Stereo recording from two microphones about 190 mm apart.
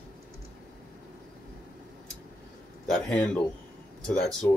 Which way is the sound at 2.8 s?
5° left (ahead or behind).